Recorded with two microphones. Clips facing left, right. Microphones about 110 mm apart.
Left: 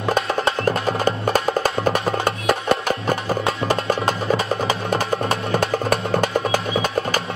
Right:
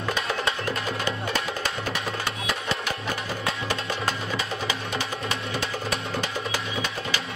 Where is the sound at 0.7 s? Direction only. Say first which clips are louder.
Left 8 dB; 45° left (ahead or behind).